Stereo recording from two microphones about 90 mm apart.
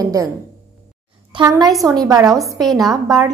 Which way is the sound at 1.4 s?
50° right (ahead or behind).